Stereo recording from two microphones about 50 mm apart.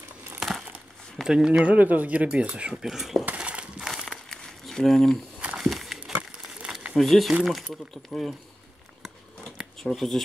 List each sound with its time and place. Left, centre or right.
0.4 s crumpling: centre
1.2 s speech: centre
1.7 s speech: right
2.8 s speech: centre
3.3 s a sound: right
4.3 s a sound: centre
5.6 s walk: centre
6.6 s crumpling: centre
7.0 s speech: centre
9.8 s speech: centre